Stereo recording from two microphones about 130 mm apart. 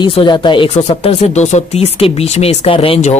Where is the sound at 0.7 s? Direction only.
50° left (ahead or behind).